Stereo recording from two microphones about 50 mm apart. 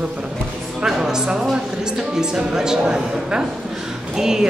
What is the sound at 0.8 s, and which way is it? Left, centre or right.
A woman's voice, centre.